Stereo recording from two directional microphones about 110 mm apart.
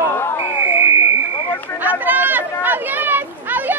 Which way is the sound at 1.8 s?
15° right (ahead or behind).